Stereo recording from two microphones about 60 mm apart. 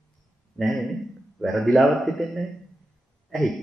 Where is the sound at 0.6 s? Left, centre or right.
Centre.